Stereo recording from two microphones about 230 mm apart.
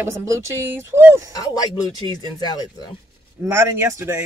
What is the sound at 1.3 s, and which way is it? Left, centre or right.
Speech, centre.